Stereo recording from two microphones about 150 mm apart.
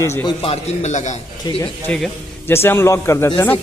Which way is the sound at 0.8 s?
50° left (ahead or behind).